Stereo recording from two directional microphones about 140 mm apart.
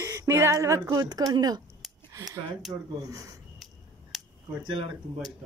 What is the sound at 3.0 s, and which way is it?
Speech, 25° right (ahead or behind).